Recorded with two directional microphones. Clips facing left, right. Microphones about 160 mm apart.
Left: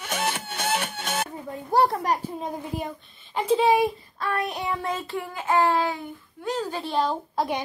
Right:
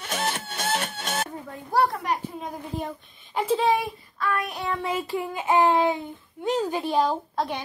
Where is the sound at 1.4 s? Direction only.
20° left (ahead or behind).